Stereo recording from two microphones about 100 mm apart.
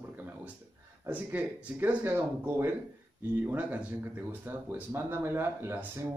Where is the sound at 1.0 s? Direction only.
15° right (ahead or behind).